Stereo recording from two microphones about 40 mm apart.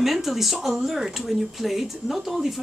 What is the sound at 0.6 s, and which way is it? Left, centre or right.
Speech, centre.